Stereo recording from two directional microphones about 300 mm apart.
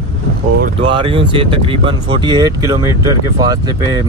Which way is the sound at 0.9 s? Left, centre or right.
Centre.